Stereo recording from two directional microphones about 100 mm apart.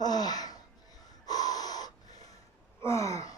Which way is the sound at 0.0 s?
40° left (ahead or behind).